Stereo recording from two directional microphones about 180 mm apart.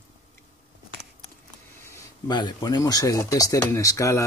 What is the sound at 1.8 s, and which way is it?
Speech, 20° left (ahead or behind).